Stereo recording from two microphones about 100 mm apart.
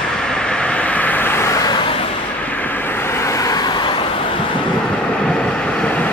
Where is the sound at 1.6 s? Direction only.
60° left (ahead or behind).